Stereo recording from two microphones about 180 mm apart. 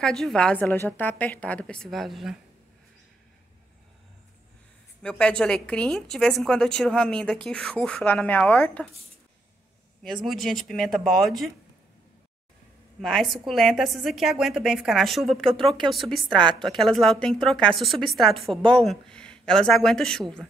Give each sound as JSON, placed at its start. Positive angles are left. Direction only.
{"t": 0.0, "sound": "a woman's voice", "side_deg": 5}
{"t": 5.0, "sound": "a woman's voice", "side_deg": 5}
{"t": 10.0, "sound": "a woman's voice", "side_deg": 0}
{"t": 13.0, "sound": "a woman's voice", "side_deg": 0}
{"t": 16.3, "sound": "a woman's voice", "side_deg": -25}
{"t": 16.6, "sound": "a woman's voice", "side_deg": 0}